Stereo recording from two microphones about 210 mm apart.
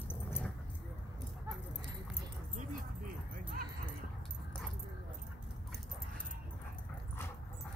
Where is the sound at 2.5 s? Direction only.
40° right (ahead or behind).